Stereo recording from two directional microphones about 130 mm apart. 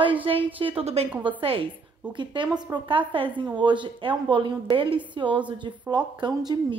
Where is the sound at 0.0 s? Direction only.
40° right (ahead or behind).